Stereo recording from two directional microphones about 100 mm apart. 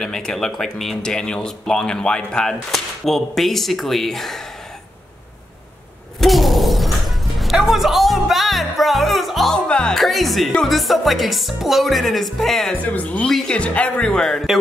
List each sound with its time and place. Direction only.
0.0 s speech: 5° left (ahead or behind)
6.2 s shatter: centre (ahead or behind)
12.8 s speech: 15° left (ahead or behind)